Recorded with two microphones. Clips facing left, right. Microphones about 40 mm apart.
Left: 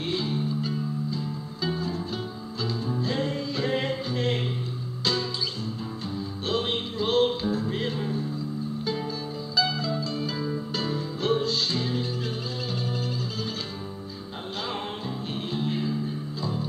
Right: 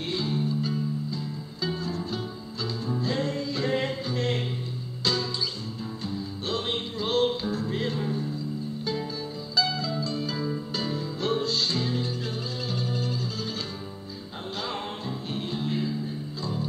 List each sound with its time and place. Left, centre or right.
0.0 s music: centre
6.0 s music: centre
9.6 s music: centre
14.7 s music: centre